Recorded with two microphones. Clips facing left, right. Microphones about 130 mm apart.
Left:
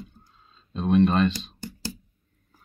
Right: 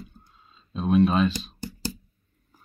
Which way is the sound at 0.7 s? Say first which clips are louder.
Even; centre (ahead or behind).